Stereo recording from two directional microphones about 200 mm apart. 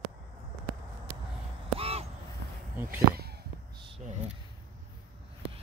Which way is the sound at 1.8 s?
30° right (ahead or behind).